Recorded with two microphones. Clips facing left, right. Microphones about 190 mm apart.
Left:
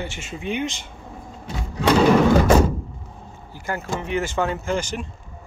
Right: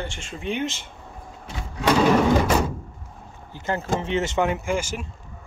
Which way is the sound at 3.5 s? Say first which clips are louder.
Right 2 dB; 25° right (ahead or behind).